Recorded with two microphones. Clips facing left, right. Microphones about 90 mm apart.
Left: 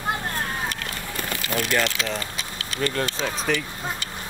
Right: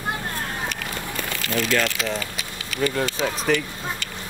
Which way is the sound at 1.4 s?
20° left (ahead or behind).